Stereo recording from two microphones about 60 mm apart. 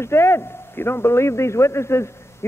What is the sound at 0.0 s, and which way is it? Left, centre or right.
A man's voice, left.